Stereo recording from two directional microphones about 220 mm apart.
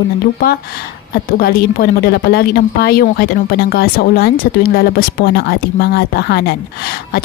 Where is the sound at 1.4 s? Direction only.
45° left (ahead or behind).